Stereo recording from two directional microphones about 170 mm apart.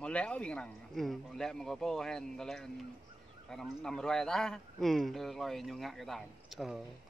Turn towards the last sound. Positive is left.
turn(degrees=0)  # may be behind; listen again after turning